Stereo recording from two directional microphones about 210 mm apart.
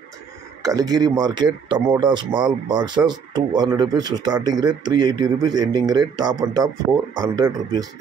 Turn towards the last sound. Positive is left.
turn(degrees=-20)  # may be behind; listen again after turning